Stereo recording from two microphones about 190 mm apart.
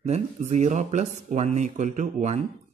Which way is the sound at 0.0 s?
35° right (ahead or behind).